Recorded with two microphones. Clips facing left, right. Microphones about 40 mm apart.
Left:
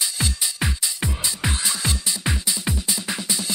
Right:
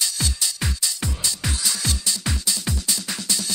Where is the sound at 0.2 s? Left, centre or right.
Centre.